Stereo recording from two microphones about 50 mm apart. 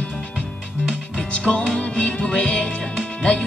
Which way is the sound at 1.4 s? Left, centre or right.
Centre.